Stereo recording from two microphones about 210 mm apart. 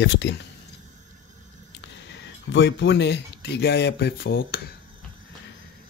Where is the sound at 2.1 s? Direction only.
55° left (ahead or behind).